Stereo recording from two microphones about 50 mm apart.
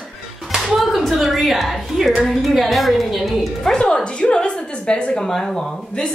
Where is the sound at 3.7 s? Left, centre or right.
Centre.